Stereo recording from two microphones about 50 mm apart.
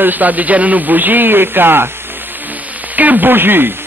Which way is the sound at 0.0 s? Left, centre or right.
Right.